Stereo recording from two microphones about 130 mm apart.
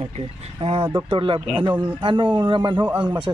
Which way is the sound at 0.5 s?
45° right (ahead or behind).